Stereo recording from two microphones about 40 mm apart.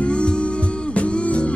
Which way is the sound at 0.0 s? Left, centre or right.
Left.